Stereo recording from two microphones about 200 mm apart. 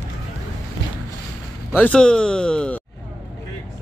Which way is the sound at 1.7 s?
5° left (ahead or behind).